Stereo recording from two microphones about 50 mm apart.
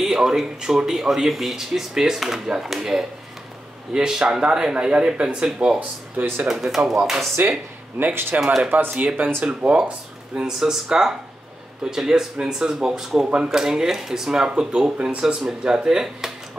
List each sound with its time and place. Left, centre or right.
0.0 s speech: centre
7.4 s speech: right
9.4 s speech: right